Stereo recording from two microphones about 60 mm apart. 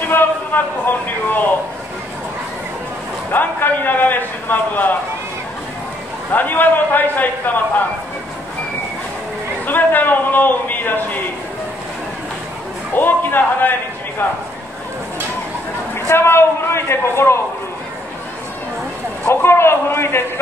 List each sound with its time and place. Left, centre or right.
0.1 s a man's voice: left
3.3 s a man's voice: left
6.3 s a man's voice: left
9.7 s a man's voice: left
12.9 s a man's voice: left
15.9 s a man's voice: left
19.2 s a man's voice: left